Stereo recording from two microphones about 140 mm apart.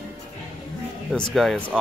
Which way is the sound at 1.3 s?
Centre (ahead or behind).